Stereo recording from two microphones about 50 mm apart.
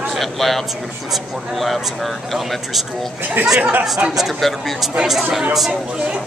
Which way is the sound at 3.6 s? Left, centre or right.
Right.